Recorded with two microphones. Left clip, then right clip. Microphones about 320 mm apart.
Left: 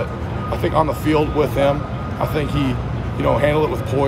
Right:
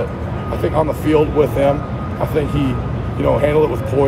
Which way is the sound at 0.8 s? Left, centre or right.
Centre.